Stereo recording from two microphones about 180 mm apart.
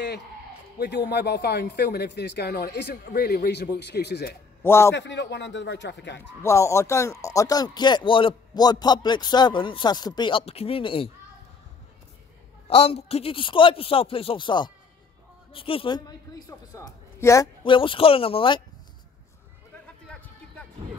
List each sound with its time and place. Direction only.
0.7 s speech: 65° left (ahead or behind)
4.6 s a man's voice: 15° left (ahead or behind)
4.9 s speech: 85° left
6.4 s speech: 15° left (ahead or behind)
12.6 s a man's voice: 35° left (ahead or behind); by 17.5 s 15° left (ahead or behind)
17.6 s speech: 30° left (ahead or behind)
20.1 s music: 10° left (ahead or behind)